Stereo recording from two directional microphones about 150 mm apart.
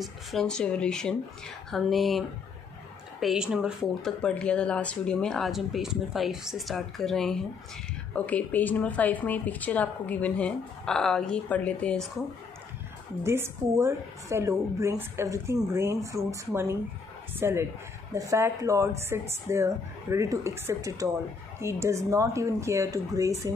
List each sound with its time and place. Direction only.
0.0 s speech: centre (ahead or behind)
13.2 s a woman's voice: 15° right (ahead or behind)